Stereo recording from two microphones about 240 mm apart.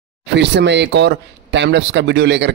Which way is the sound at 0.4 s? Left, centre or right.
Right.